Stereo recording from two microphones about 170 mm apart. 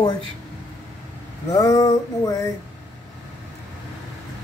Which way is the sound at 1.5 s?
20° left (ahead or behind).